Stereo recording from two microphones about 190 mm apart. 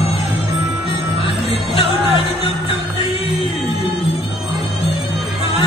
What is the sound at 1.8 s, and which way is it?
Music, 30° left (ahead or behind).